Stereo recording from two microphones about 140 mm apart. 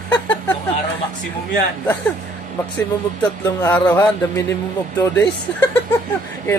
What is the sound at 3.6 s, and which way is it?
A man's voice, 15° left (ahead or behind).